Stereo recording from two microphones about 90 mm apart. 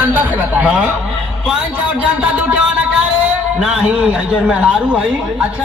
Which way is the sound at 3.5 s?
10° right (ahead or behind).